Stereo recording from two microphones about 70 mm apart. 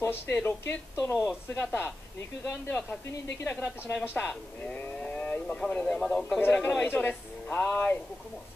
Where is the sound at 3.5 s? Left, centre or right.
Left.